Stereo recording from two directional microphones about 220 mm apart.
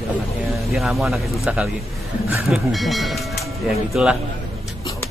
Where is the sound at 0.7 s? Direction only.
Centre (ahead or behind).